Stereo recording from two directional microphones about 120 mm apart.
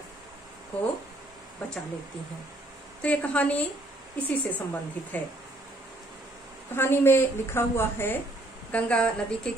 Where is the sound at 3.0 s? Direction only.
10° left (ahead or behind).